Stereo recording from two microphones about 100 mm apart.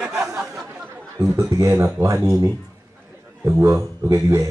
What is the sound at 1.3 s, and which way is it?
Speech, 30° right (ahead or behind).